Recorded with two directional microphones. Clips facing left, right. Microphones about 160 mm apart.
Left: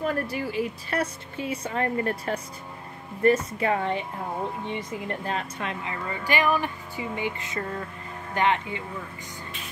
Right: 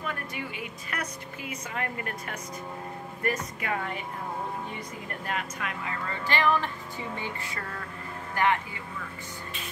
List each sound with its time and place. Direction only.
0.0 s speech: 35° left (ahead or behind)
5.2 s speech: 30° left (ahead or behind)
6.0 s speech: 15° left (ahead or behind)